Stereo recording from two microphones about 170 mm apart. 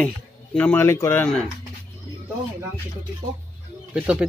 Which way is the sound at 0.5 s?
10° left (ahead or behind).